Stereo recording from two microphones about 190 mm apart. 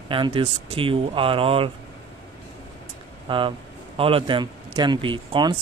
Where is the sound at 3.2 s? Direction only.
25° right (ahead or behind).